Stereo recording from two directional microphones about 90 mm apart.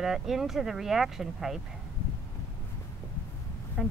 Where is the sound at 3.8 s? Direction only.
5° right (ahead or behind).